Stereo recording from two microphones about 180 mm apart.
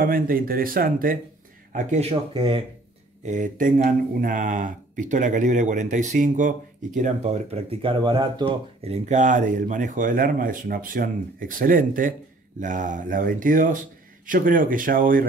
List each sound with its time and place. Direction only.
0.0 s speech: 50° right (ahead or behind)
1.7 s speech: 40° right (ahead or behind)
3.3 s speech: 45° right (ahead or behind)